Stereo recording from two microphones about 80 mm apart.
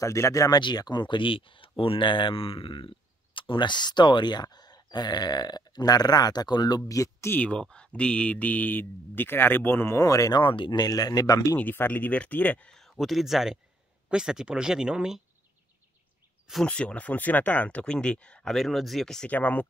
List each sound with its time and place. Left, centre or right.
0.0 s speech: left
0.6 s speech: left
6.9 s speech: left
7.2 s speech: centre
9.9 s speech: left
10.3 s speech: left
11.5 s speech: left
12.7 s speech: centre
16.6 s speech: centre
19.2 s speech: left